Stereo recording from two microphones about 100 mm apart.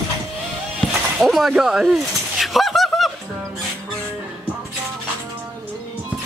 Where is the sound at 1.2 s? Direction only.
Centre (ahead or behind).